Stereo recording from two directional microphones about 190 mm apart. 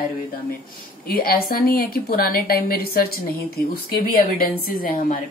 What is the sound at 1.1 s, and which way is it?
A woman's voice, 50° left (ahead or behind).